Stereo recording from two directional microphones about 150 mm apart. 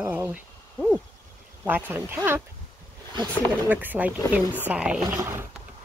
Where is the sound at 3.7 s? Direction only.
10° right (ahead or behind).